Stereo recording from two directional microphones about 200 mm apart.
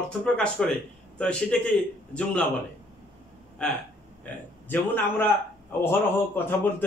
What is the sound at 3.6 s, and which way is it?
A man's voice, 5° left (ahead or behind).